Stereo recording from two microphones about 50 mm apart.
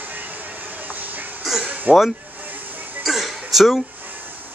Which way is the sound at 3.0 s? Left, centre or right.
Centre.